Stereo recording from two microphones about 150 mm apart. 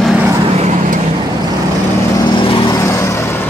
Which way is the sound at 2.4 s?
35° left (ahead or behind).